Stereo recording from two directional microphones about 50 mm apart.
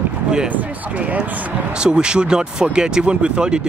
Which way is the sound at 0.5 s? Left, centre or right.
Right.